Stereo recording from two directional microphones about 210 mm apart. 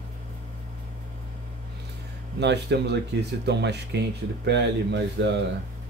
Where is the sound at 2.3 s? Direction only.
55° right (ahead or behind).